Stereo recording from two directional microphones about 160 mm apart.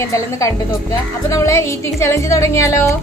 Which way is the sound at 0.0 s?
20° left (ahead or behind).